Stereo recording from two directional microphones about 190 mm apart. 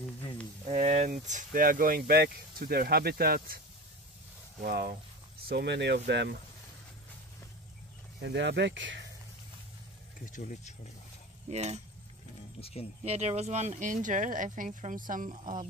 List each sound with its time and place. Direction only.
0.7 s speech: 35° right (ahead or behind); by 3.5 s 50° right (ahead or behind)
4.6 s speech: 50° right (ahead or behind)
8.2 s speech: 65° right (ahead or behind)
10.2 s speech: 40° left (ahead or behind)
11.5 s speech: 35° right (ahead or behind)
12.5 s speech: 30° left (ahead or behind)
13.0 s speech: 35° right (ahead or behind)